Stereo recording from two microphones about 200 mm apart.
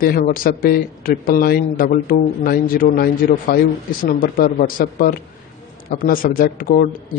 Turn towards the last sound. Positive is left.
turn(degrees=45)  # may be behind; listen again after turning